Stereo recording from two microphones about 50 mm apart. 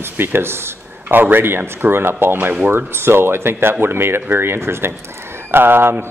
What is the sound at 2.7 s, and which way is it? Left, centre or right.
A man's voice, right.